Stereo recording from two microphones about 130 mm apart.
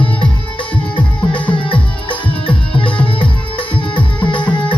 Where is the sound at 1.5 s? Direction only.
40° left (ahead or behind).